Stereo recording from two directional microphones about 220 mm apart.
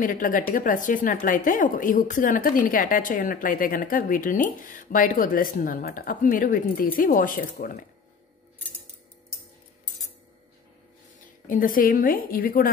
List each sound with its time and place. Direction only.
0.0 s speech: 40° left (ahead or behind)
11.4 s speech: 40° left (ahead or behind)